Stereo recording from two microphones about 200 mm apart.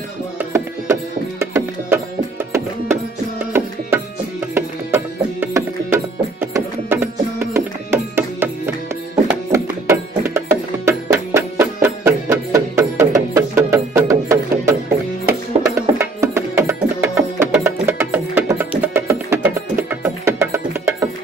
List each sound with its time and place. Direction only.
0.4 s tabla: 10° right (ahead or behind)
1.4 s music: 10° right (ahead or behind)
15.7 s music: 15° right (ahead or behind)